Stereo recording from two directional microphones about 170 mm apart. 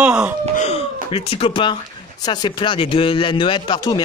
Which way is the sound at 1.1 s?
35° left (ahead or behind).